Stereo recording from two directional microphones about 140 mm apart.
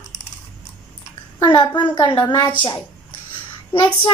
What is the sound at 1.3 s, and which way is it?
A woman's voice, 30° left (ahead or behind).